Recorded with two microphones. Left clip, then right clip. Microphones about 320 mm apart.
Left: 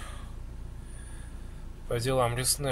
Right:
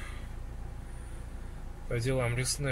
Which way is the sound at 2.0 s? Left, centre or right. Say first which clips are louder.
Left 5 dB; left.